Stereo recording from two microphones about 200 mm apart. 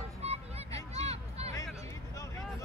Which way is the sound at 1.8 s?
15° left (ahead or behind).